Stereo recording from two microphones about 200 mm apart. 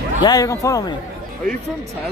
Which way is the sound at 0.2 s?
20° left (ahead or behind).